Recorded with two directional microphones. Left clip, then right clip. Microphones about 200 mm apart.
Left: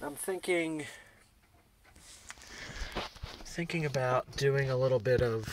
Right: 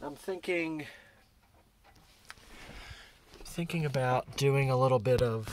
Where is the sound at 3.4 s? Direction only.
20° right (ahead or behind).